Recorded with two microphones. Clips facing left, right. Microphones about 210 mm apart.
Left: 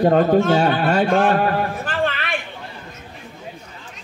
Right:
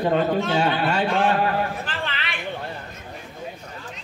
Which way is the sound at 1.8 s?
50° left (ahead or behind).